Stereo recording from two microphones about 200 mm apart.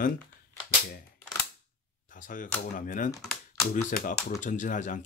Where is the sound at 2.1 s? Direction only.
40° left (ahead or behind).